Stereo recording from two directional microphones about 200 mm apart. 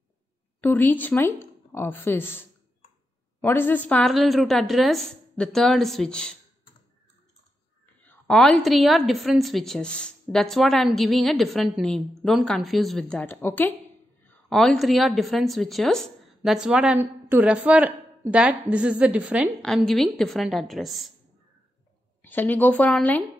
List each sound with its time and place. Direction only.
0.6 s a woman's voice: 10° left (ahead or behind)
8.3 s a woman's voice: 5° left (ahead or behind)
22.2 s speech: 10° left (ahead or behind)